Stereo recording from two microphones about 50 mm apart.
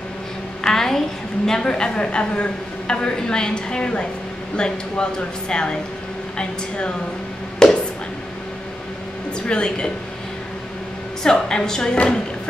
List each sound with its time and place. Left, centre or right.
0.7 s a woman's voice: centre
7.6 s a sound: centre
9.5 s a woman's voice: centre
11.2 s a woman's voice: centre